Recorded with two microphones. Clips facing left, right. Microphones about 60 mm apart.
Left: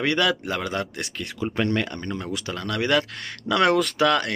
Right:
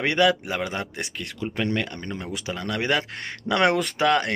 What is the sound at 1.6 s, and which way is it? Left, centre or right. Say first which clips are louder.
Speech: left 2 dB; centre.